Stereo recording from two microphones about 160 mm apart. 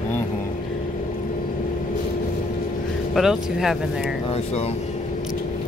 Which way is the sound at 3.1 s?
Centre (ahead or behind).